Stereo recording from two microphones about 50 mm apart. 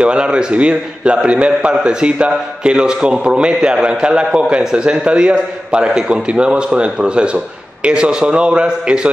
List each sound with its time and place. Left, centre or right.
0.0 s a man's voice: centre